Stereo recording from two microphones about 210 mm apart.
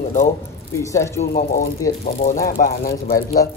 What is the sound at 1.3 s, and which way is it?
Speech, 45° left (ahead or behind).